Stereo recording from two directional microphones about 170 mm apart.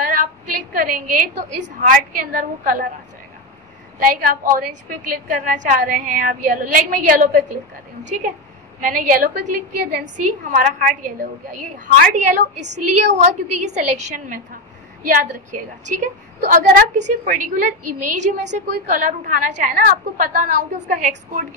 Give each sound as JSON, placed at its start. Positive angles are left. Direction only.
{"t": 0.0, "sound": "a sound", "side_deg": -55}
{"t": 0.7, "sound": "a woman's voice", "side_deg": -55}
{"t": 4.0, "sound": "a woman's voice", "side_deg": -55}
{"t": 9.8, "sound": "a woman's voice", "side_deg": -70}
{"t": 10.1, "sound": "a woman's voice", "side_deg": -50}